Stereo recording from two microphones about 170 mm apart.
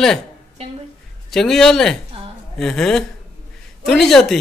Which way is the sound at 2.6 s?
5° left (ahead or behind).